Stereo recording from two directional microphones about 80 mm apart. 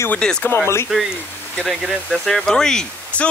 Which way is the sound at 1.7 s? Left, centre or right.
Centre.